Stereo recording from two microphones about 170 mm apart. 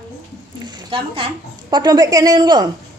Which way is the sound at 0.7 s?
25° right (ahead or behind).